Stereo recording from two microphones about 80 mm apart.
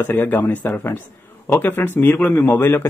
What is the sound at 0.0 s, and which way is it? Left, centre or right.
Speech, left.